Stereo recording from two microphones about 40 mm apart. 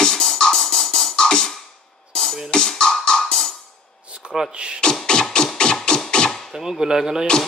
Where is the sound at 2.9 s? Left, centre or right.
Centre.